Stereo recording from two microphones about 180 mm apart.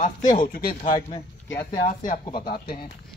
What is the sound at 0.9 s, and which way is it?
Speech, 20° left (ahead or behind).